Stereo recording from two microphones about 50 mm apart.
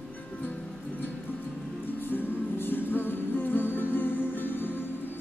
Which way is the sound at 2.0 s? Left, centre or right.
Left.